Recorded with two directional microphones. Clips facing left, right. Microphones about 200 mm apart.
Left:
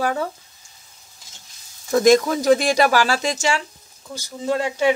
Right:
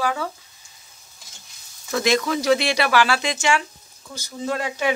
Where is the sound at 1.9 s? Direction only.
45° left (ahead or behind).